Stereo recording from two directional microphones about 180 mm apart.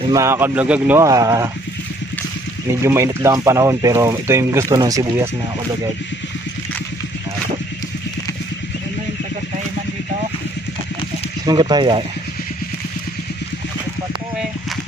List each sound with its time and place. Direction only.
0.1 s speech: 15° right (ahead or behind)
2.8 s speech: 15° right (ahead or behind)
11.4 s speech: 25° right (ahead or behind)